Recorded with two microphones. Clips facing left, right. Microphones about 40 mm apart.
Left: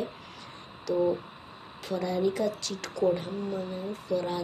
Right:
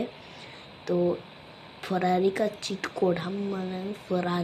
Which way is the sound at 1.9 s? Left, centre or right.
Right.